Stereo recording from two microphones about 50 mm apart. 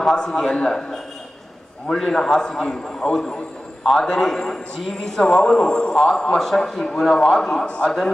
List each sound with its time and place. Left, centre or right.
0.0 s a man's voice: centre
7.6 s a man's voice: centre